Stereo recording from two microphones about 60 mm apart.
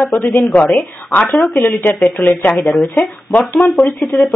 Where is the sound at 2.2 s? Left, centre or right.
Left.